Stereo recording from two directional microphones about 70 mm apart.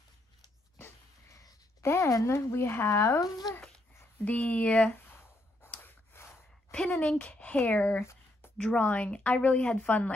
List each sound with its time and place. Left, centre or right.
0.7 s dog: left
1.8 s speech: left
3.2 s speech: left
4.2 s speech: left
5.8 s gasp: left
7.0 s speech: left
8.0 s a sound: left
8.5 s speech: centre